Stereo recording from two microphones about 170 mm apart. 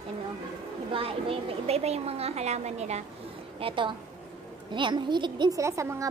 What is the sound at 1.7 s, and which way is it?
A woman's voice, 40° right (ahead or behind).